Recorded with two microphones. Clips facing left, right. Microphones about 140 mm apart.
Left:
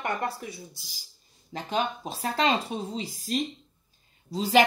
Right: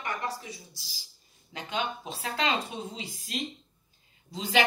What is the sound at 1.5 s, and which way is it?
Speech, 40° left (ahead or behind).